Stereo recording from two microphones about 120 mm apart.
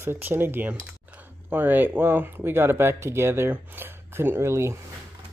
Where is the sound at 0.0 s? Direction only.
15° right (ahead or behind).